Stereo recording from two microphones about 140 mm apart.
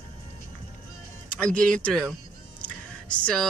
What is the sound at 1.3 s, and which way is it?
Speech, 5° left (ahead or behind).